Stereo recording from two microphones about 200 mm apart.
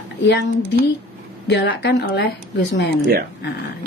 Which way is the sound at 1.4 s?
60° left (ahead or behind).